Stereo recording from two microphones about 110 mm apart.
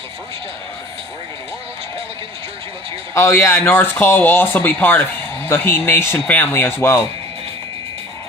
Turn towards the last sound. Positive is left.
turn(degrees=20)  # may be behind; listen again after turning